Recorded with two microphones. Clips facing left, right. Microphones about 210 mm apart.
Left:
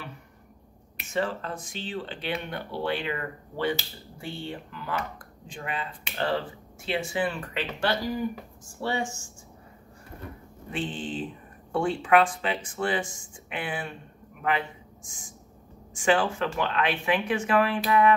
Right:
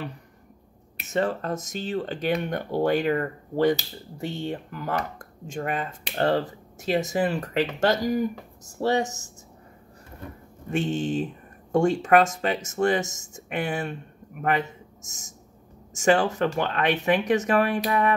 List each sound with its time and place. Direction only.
1.0 s speech: 40° right (ahead or behind)
10.7 s a man's voice: 45° right (ahead or behind)